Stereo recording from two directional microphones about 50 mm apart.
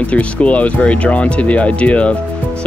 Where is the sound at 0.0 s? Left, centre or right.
Left.